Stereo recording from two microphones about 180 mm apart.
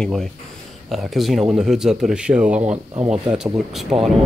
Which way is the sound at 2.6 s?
35° right (ahead or behind).